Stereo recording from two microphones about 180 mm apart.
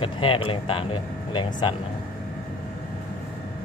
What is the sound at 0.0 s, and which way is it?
Speech, 30° left (ahead or behind).